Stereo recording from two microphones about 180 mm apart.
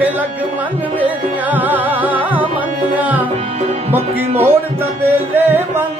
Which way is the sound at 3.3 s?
35° right (ahead or behind).